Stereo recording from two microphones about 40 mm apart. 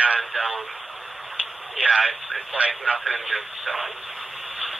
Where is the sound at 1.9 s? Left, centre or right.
Centre.